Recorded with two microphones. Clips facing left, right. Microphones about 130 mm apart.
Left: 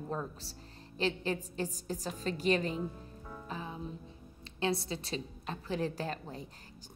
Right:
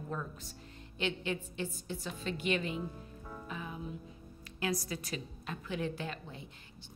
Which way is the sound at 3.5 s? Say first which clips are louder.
Left 2 dB; 30° left (ahead or behind).